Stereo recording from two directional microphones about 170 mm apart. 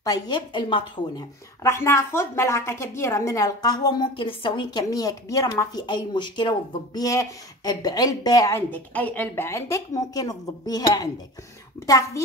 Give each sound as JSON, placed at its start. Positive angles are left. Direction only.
{"t": 0.0, "sound": "a woman's voice", "side_deg": 25}
{"t": 1.6, "sound": "a woman's voice", "side_deg": 15}